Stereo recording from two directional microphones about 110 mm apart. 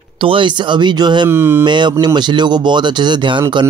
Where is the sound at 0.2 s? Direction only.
50° right (ahead or behind).